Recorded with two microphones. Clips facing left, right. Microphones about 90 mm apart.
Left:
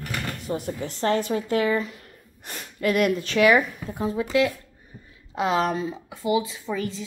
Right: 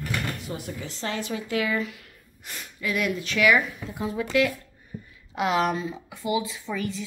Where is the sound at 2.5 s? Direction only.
45° left (ahead or behind).